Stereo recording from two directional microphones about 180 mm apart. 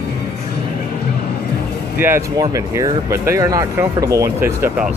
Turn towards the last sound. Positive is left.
turn(degrees=-10)  # may be behind; listen again after turning